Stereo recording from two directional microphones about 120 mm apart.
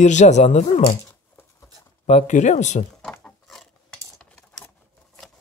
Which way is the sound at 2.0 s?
80° left.